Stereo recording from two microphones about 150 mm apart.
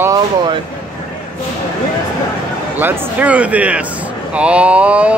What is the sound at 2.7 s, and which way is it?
Speech, 15° right (ahead or behind).